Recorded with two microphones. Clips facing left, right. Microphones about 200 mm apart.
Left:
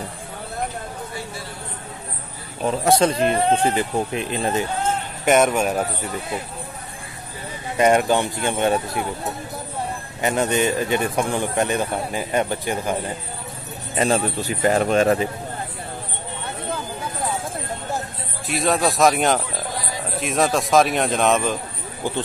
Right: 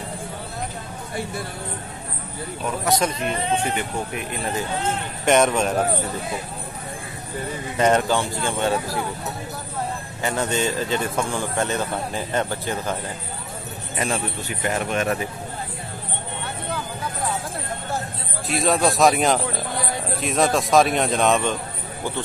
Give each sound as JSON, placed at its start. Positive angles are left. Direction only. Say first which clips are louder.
{"t": 2.6, "sound": "speech", "louder": "left 5 dB", "side_deg": 30}
{"t": 5.2, "sound": "a man's voice", "louder": "left 1 dB", "side_deg": 5}
{"t": 7.7, "sound": "speech", "louder": "left 2 dB", "side_deg": 15}
{"t": 10.2, "sound": "a man's voice", "louder": "left 3 dB", "side_deg": 20}
{"t": 13.9, "sound": "speech", "louder": "left 6 dB", "side_deg": 30}
{"t": 18.5, "sound": "speech", "louder": "even", "side_deg": 0}